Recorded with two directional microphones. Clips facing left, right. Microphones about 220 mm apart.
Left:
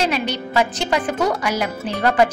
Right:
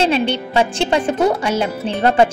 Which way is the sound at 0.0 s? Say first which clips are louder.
Right 5 dB; 25° right (ahead or behind).